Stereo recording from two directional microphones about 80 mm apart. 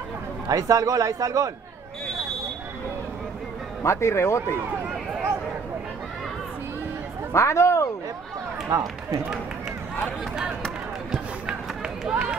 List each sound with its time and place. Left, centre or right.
0.5 s a man's voice: right
3.8 s speech: left
7.3 s speech: left
8.6 s speech: right
12.0 s speech: centre